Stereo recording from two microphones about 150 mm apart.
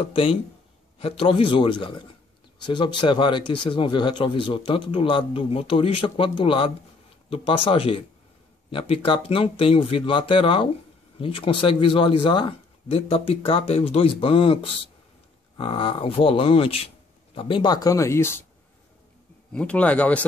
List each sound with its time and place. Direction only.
0.1 s speech: 35° left (ahead or behind); by 18.4 s 15° left (ahead or behind)
19.5 s speech: 10° left (ahead or behind)